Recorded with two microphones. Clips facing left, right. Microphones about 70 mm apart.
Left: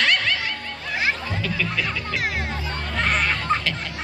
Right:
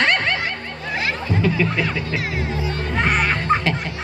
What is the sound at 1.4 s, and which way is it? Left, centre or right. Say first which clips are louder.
Music: right 6 dB; right.